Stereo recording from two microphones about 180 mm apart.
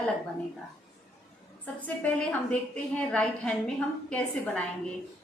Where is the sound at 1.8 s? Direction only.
10° left (ahead or behind).